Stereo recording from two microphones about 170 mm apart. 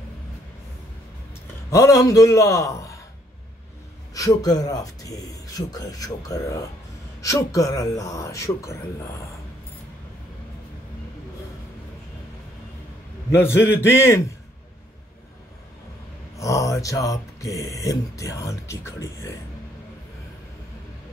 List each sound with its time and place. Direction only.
1.7 s speech: 20° left (ahead or behind)
4.1 s speech: 20° left (ahead or behind)
13.3 s a man's voice: 15° left (ahead or behind)
16.3 s speech: 20° left (ahead or behind)